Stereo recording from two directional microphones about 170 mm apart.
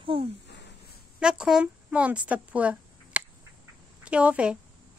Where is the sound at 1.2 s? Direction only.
5° right (ahead or behind).